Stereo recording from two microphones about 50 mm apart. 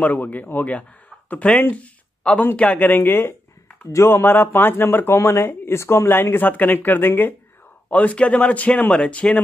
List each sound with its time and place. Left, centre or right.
0.0 s speech: left
6.0 s speech: left
7.9 s speech: left